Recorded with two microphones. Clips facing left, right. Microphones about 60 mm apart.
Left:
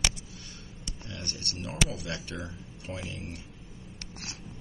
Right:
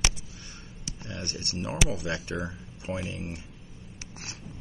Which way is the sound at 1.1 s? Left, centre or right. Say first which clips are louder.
Right 4 dB; right.